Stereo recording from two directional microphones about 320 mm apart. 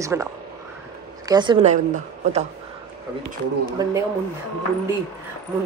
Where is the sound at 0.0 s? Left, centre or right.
Centre.